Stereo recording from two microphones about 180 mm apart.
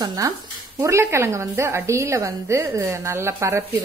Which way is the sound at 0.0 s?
20° right (ahead or behind).